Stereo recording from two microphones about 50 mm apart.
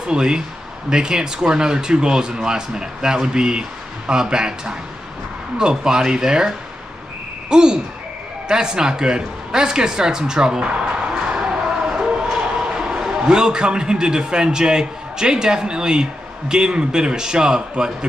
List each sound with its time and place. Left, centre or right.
0.0 s speech: centre